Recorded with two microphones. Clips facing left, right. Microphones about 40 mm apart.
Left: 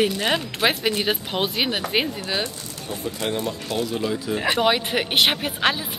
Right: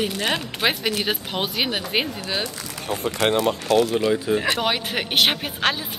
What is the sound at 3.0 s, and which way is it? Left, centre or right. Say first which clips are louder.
Speech: right 6 dB; right.